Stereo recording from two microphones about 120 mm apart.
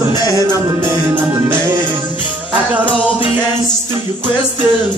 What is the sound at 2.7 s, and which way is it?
Music, 10° right (ahead or behind).